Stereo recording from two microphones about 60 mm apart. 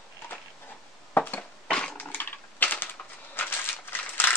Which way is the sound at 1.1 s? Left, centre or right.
Left.